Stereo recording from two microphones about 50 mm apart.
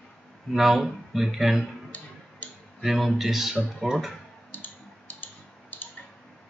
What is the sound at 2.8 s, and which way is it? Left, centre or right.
Speech, centre.